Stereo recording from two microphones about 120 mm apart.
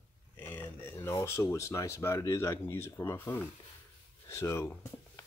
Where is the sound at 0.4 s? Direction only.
15° left (ahead or behind).